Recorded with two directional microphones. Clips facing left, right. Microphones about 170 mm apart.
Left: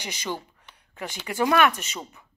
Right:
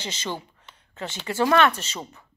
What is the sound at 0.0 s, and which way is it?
Speech, 15° left (ahead or behind).